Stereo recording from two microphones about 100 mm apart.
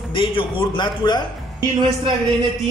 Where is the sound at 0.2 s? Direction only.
60° left (ahead or behind).